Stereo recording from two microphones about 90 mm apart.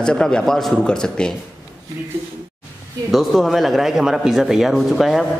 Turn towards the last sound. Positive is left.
turn(degrees=0)  # may be behind; listen again after turning